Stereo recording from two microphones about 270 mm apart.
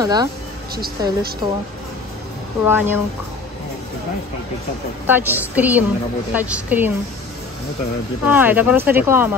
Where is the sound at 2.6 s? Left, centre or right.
Centre.